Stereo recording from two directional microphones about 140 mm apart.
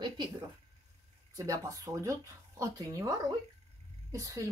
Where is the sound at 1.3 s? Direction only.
25° right (ahead or behind).